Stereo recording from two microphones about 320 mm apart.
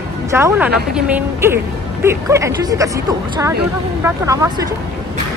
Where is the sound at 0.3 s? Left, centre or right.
Centre.